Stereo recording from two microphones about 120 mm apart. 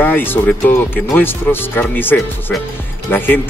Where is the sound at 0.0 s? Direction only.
20° left (ahead or behind).